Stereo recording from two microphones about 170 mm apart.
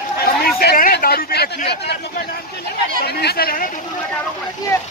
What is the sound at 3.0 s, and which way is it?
Speech, 70° left (ahead or behind).